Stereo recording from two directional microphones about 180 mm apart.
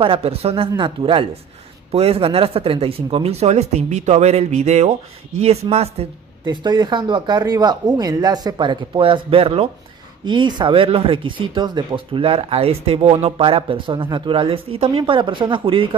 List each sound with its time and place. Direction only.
0.0 s speech: 30° right (ahead or behind)
6.4 s speech: 25° right (ahead or behind)